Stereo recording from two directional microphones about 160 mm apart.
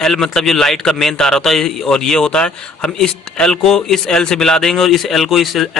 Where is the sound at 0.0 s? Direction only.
Centre (ahead or behind).